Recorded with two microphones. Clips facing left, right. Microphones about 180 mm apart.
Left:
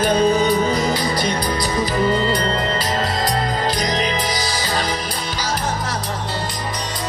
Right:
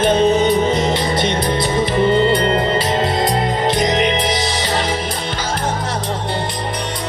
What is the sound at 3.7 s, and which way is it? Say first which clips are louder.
Music: right 5 dB; 25° right (ahead or behind).